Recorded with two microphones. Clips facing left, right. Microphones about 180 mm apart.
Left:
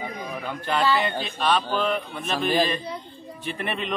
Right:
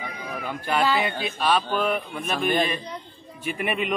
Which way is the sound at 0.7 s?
10° right (ahead or behind).